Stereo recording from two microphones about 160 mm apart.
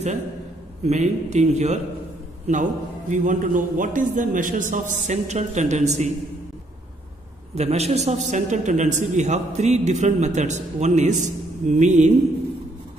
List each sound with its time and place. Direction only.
0.8 s a man's voice: 45° right (ahead or behind)
7.5 s a man's voice: 40° right (ahead or behind)